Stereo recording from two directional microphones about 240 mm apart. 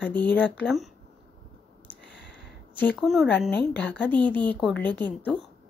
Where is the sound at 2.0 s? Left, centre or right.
Left.